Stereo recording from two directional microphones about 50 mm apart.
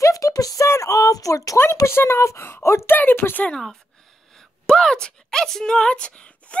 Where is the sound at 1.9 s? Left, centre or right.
Left.